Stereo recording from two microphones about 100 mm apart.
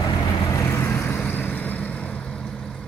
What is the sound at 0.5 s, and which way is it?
Vehicle, 30° left (ahead or behind).